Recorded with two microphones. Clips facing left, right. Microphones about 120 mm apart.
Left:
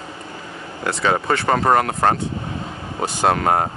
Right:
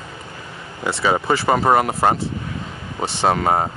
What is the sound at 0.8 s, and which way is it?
Speech, 5° right (ahead or behind).